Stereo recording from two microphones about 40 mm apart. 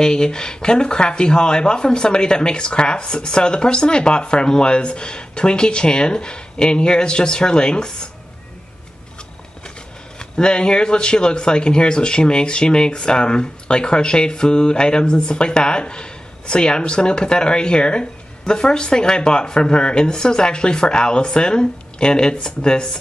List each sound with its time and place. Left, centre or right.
0.0 s a man's voice: centre
10.1 s a man's voice: left